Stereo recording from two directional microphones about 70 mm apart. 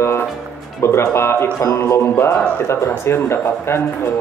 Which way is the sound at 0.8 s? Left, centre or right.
Left.